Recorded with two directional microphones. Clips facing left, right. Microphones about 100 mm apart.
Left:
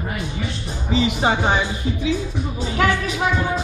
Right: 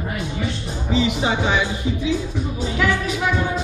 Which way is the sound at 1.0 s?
50° left (ahead or behind).